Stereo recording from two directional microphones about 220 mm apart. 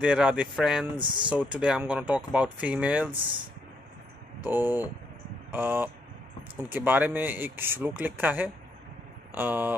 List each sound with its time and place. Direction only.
0.0 s speech: 5° right (ahead or behind)
0.9 s speech: 20° right (ahead or behind)
1.3 s speech: 5° right (ahead or behind)
4.4 s speech: 10° right (ahead or behind)